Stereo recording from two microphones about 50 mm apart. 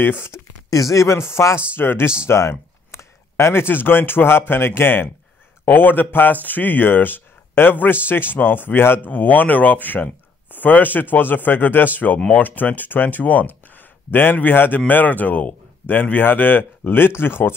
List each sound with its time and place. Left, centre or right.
0.0 s speech: left
0.9 s speech: left
2.2 s speech: left
9.1 s speech: left